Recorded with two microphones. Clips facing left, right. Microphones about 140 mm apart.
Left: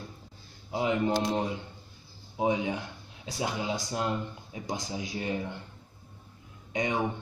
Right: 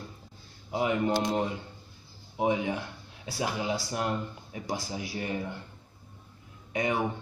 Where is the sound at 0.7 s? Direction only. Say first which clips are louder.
Even; 20° left (ahead or behind).